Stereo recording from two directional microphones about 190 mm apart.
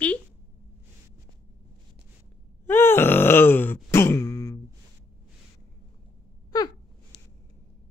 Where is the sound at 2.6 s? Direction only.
15° left (ahead or behind).